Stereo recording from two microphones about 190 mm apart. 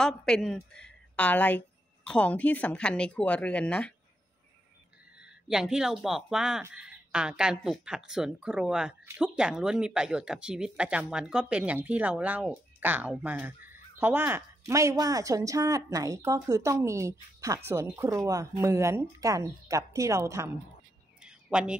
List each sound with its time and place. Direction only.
0.0 s a woman's voice: 5° left (ahead or behind)
5.5 s speech: 5° right (ahead or behind)
21.2 s a sound: 5° right (ahead or behind)